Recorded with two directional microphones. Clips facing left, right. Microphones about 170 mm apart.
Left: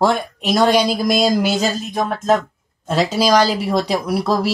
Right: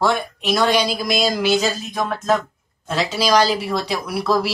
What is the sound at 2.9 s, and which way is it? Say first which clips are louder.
Speech: left 4 dB; 45° left (ahead or behind).